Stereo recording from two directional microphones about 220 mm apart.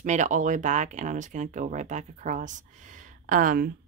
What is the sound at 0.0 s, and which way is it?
Speech, 35° right (ahead or behind).